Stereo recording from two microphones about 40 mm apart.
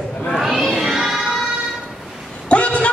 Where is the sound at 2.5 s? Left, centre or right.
Left.